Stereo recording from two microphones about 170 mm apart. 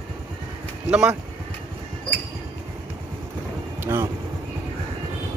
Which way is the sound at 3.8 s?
15° right (ahead or behind).